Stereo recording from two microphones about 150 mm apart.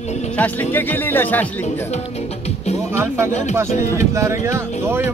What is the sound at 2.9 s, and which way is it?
Speech, 15° right (ahead or behind).